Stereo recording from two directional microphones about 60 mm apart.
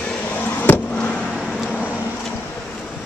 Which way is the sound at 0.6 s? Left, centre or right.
Left.